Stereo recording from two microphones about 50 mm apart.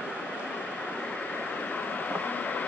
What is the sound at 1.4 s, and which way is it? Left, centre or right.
Vehicle, left.